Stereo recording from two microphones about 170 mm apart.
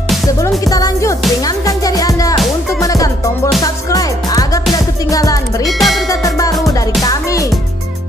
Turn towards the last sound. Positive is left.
turn(degrees=20)  # may be behind; listen again after turning